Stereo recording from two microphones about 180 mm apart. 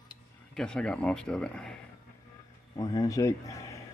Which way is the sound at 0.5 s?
5° left (ahead or behind).